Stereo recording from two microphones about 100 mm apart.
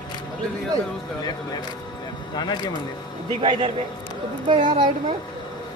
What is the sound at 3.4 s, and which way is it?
Speech, 75° right (ahead or behind).